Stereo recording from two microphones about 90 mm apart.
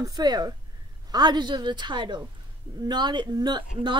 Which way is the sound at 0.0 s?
50° right (ahead or behind).